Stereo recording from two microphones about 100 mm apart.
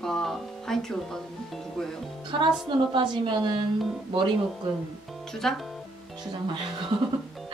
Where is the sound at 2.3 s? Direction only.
60° right (ahead or behind).